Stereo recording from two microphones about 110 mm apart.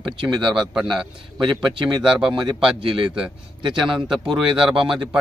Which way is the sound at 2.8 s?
50° right (ahead or behind).